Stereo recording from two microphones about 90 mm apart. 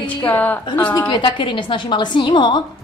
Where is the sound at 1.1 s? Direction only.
65° left (ahead or behind).